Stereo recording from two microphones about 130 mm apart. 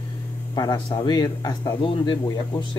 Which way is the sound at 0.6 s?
30° left (ahead or behind).